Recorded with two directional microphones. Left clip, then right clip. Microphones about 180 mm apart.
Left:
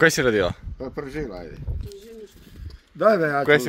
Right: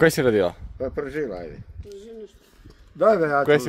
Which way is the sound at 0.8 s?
55° left (ahead or behind).